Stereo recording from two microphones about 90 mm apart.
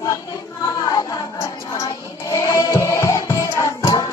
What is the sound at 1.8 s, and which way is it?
Music, 40° left (ahead or behind).